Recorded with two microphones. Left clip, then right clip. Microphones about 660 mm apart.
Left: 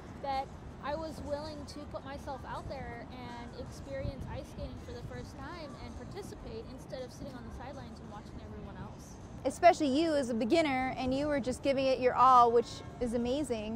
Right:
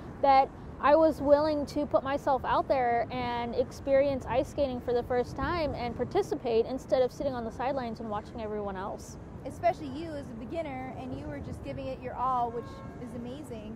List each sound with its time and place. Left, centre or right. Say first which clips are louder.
0.2 s a woman's voice: right 14 dB; right
9.4 s a woman's voice: left 5 dB; left